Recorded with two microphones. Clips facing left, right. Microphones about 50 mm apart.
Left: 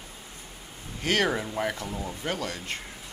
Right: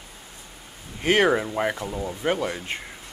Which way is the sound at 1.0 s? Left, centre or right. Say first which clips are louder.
Right 6 dB; right.